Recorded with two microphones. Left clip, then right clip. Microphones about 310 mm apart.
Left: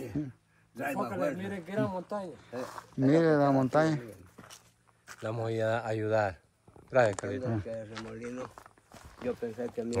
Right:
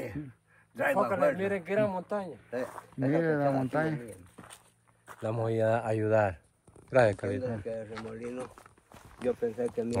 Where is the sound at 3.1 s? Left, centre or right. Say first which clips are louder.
Left 3 dB; centre.